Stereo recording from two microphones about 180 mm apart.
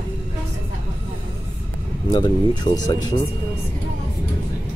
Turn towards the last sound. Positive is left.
turn(degrees=25)  # may be behind; listen again after turning